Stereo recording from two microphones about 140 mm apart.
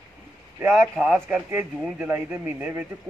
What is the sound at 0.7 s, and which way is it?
Speech, 5° right (ahead or behind).